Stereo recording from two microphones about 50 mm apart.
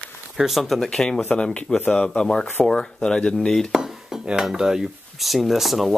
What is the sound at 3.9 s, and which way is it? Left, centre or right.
Speech, centre.